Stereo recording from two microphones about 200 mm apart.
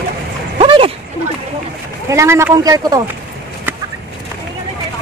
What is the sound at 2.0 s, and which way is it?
Speech, 15° right (ahead or behind).